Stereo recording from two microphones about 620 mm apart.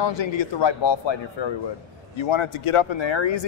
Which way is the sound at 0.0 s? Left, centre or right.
Left.